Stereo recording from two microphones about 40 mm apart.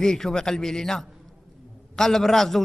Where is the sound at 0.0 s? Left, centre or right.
Centre.